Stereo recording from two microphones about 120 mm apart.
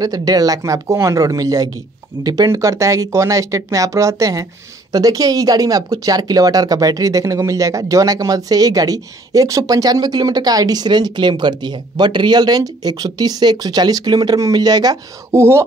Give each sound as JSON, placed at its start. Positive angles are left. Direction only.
{"t": 0.0, "sound": "speech", "side_deg": -30}
{"t": 15.3, "sound": "speech", "side_deg": -20}